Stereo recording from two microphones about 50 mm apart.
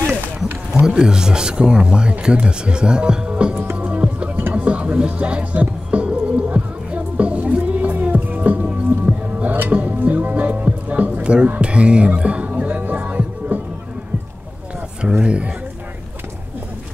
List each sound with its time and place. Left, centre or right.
0.7 s speech: centre
3.7 s music: right
8.5 s music: centre
9.4 s music: right
15.0 s speech: centre